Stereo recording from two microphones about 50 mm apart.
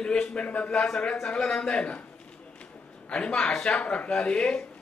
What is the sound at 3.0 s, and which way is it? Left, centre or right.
A man's voice, centre.